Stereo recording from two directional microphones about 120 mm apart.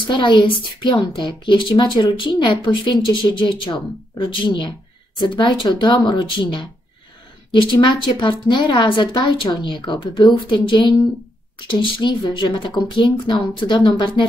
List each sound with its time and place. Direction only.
0.0 s speech: 40° left (ahead or behind)
7.7 s speech: 40° left (ahead or behind)